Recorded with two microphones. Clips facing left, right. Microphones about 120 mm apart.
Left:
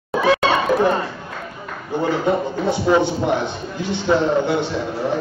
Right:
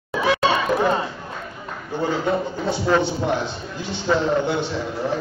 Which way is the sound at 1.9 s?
15° left (ahead or behind).